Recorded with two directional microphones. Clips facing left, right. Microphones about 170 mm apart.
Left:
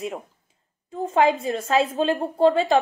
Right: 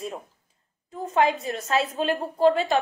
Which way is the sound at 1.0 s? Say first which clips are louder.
Left 3 dB; 30° left (ahead or behind).